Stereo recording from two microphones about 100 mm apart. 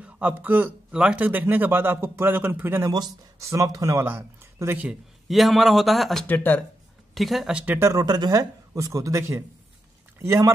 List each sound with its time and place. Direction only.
0.0 s speech: 15° right (ahead or behind)
2.9 s a man's voice: 35° right (ahead or behind)
4.0 s speech: 20° right (ahead or behind)
5.3 s a man's voice: centre (ahead or behind)
6.2 s speech: 20° left (ahead or behind)
7.2 s a man's voice: centre (ahead or behind)
7.6 s speech: 15° right (ahead or behind)
7.9 s a man's voice: 40° right (ahead or behind)